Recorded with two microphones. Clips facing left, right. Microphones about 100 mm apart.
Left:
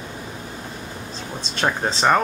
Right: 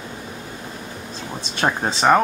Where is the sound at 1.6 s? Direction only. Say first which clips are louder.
Right 2 dB; 5° right (ahead or behind).